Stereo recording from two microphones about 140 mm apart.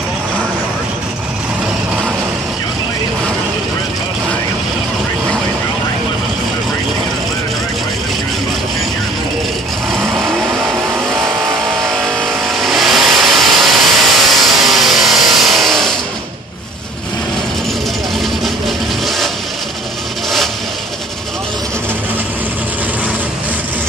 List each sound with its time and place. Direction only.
12.1 s vehicle: centre (ahead or behind)
19.0 s vehicle: centre (ahead or behind)